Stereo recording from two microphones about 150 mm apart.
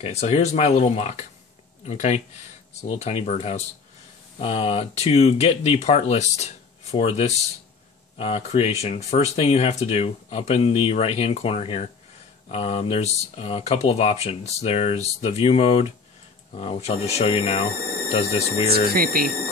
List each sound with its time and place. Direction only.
0.0 s speech: 45° left (ahead or behind)
18.9 s speech: 80° right